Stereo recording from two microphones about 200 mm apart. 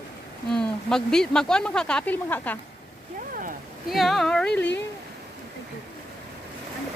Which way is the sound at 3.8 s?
Centre (ahead or behind).